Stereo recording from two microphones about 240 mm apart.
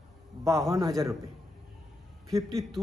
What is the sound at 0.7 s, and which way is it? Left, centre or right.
Speech, centre.